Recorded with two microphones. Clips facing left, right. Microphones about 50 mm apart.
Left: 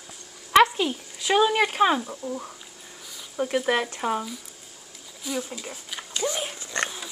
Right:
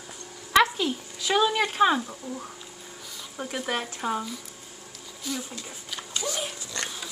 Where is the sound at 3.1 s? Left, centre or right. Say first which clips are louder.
Left 8 dB; centre.